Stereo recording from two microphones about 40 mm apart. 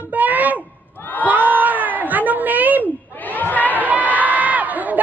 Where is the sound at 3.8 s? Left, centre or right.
Right.